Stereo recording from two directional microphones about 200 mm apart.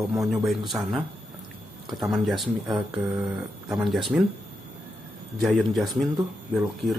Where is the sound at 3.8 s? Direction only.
Centre (ahead or behind).